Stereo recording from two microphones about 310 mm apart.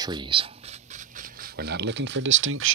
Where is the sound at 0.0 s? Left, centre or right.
Centre.